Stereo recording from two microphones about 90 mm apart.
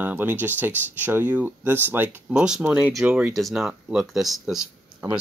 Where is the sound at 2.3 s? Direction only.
5° right (ahead or behind).